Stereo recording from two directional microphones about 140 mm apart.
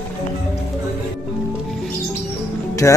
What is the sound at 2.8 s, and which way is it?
Music, 20° left (ahead or behind).